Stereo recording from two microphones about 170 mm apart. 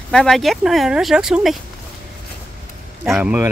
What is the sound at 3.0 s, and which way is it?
Speech, 10° right (ahead or behind).